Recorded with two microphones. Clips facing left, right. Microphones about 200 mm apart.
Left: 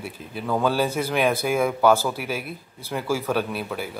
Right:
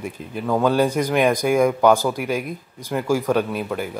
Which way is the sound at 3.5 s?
10° left (ahead or behind).